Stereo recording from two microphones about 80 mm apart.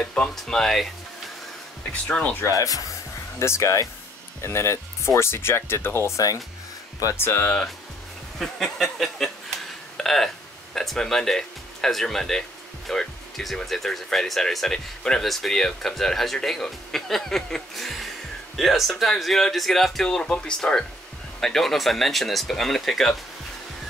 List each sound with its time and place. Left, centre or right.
0.0 s speech: centre
1.9 s speech: centre
2.4 s speech: left
7.2 s speech: left
8.4 s speech: centre